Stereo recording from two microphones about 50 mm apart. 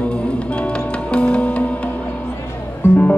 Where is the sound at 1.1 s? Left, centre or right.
Left.